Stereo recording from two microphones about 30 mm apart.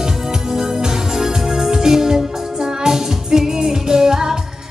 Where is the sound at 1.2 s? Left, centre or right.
Centre.